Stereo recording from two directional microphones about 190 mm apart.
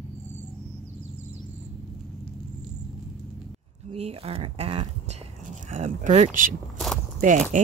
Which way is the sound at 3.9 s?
35° right (ahead or behind).